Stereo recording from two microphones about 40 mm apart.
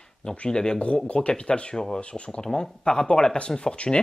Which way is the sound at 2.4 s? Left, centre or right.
Centre.